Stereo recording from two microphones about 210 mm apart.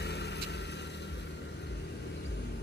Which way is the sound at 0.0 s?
50° left (ahead or behind).